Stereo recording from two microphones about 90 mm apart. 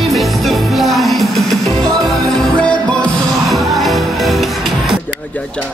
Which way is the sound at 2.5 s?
10° left (ahead or behind).